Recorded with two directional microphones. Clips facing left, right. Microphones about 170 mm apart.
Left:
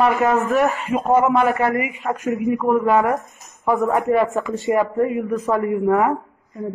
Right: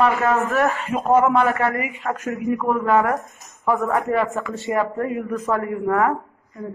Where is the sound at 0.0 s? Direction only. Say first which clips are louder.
Left 1 dB; 15° left (ahead or behind).